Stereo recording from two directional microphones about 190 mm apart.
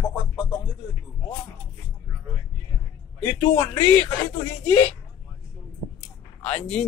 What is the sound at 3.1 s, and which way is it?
Speech, 20° left (ahead or behind).